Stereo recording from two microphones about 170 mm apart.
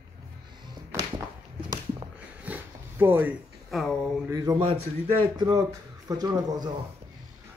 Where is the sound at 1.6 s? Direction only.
25° right (ahead or behind).